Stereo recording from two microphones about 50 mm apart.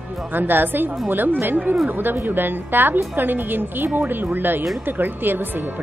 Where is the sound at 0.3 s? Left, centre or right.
Right.